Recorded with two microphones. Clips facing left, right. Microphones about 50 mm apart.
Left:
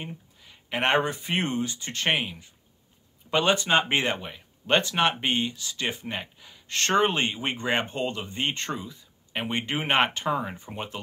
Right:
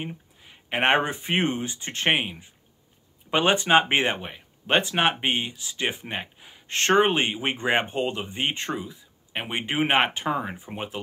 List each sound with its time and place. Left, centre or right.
0.4 s speech: right